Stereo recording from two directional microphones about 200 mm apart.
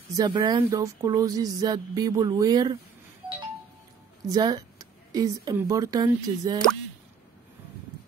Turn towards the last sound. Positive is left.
turn(degrees=-20)  # may be behind; listen again after turning